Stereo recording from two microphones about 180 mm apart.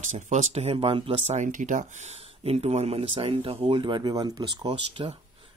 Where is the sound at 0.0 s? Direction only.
40° right (ahead or behind).